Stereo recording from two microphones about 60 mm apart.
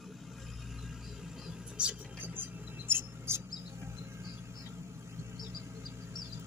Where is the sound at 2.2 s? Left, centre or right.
Right.